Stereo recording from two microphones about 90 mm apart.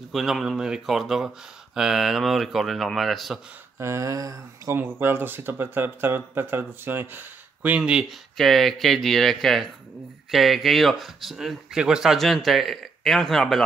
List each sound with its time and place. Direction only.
0.1 s speech: centre (ahead or behind)
3.8 s speech: 35° right (ahead or behind)
4.7 s speech: 25° right (ahead or behind)
8.4 s speech: centre (ahead or behind)